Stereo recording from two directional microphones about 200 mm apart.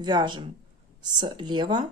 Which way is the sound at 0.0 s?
20° right (ahead or behind).